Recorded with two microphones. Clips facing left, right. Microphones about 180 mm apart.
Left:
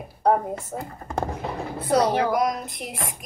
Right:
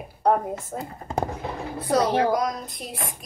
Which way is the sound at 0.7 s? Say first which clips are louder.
Even; 10° left (ahead or behind).